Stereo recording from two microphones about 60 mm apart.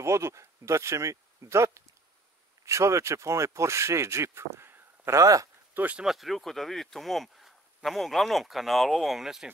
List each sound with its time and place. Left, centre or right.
0.0 s speech: right
5.1 s speech: right
6.0 s speech: centre